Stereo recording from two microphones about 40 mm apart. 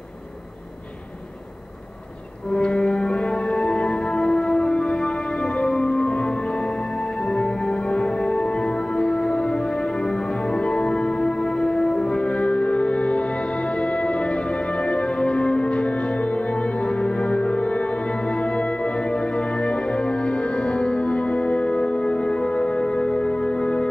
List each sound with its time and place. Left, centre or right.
2.5 s music: left